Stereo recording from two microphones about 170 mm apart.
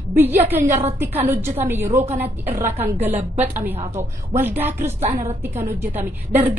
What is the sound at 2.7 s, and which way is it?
Speech, 40° right (ahead or behind).